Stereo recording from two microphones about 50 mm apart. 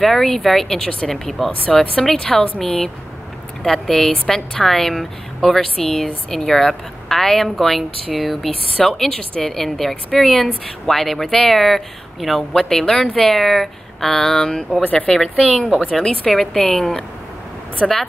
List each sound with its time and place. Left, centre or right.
0.0 s speech: centre
14.8 s speech: left
15.4 s speech: centre